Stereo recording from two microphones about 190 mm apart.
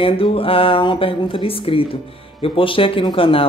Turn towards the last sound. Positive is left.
turn(degrees=30)  # may be behind; listen again after turning